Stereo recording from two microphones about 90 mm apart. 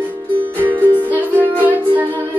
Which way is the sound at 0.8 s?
20° right (ahead or behind).